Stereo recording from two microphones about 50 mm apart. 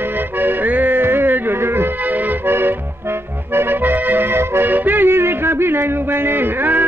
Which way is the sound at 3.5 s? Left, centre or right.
Right.